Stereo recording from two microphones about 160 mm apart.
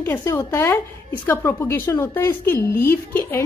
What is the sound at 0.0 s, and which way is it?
A woman's voice, 15° left (ahead or behind).